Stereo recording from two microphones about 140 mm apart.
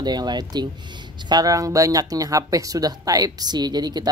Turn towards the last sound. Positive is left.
turn(degrees=-30)  # may be behind; listen again after turning